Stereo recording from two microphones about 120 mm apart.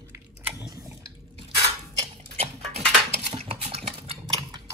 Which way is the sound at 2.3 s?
65° right (ahead or behind).